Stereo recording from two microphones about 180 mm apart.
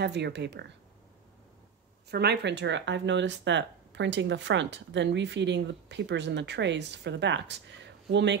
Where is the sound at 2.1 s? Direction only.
65° right (ahead or behind).